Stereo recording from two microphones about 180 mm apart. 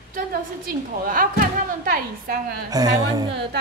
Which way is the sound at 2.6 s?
20° right (ahead or behind).